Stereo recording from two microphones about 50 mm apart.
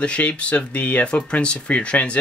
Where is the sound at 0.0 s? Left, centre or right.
Left.